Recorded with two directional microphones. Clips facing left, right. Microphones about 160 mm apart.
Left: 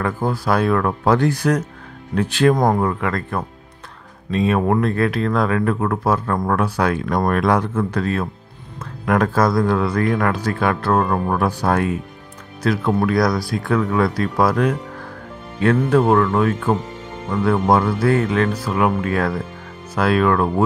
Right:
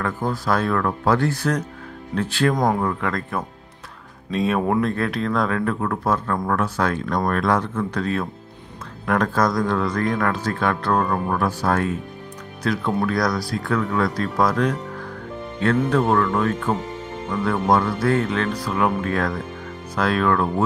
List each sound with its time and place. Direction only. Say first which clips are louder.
0.0 s speech: left 3 dB; 10° left (ahead or behind)
2.7 s speech: left 3 dB; 5° left (ahead or behind)
11.0 s speech: left 3 dB; 20° left (ahead or behind)
16.1 s speech: left 3 dB; 10° left (ahead or behind)